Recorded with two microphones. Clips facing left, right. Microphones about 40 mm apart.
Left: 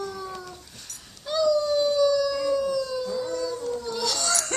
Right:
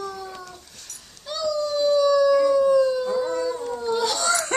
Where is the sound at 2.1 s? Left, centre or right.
Right.